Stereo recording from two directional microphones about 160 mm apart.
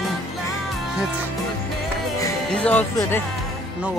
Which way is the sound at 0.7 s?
5° right (ahead or behind).